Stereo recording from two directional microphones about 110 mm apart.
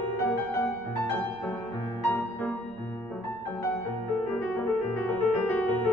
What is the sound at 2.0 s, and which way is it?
Music, 15° left (ahead or behind).